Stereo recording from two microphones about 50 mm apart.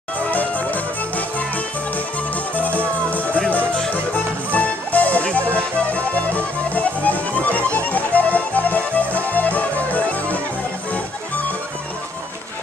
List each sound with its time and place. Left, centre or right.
0.3 s music: left
2.5 s music: left